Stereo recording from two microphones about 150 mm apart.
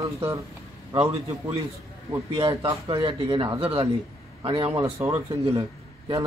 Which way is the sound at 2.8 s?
35° right (ahead or behind).